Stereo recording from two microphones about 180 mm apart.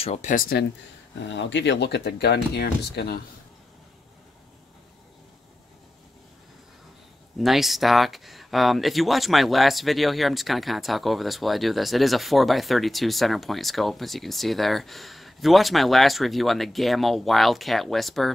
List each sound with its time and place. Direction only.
0.0 s speech: 40° left (ahead or behind); by 0.7 s 55° left (ahead or behind)
1.2 s speech: 85° left; by 3.2 s 65° left (ahead or behind)
7.3 s speech: centre (ahead or behind)